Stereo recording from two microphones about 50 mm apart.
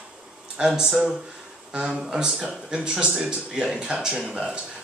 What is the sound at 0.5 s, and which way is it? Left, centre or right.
Speech, centre.